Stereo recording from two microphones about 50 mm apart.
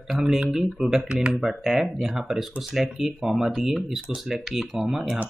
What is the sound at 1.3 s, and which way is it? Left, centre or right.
Speech, centre.